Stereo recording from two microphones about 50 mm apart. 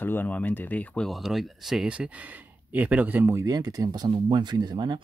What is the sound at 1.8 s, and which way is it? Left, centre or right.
Speech, right.